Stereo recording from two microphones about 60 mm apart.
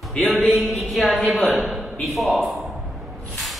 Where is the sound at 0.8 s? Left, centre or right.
Centre.